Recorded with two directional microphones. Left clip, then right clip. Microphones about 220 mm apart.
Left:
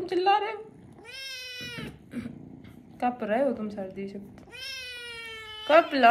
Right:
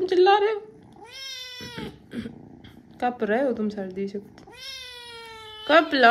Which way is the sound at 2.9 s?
45° right (ahead or behind).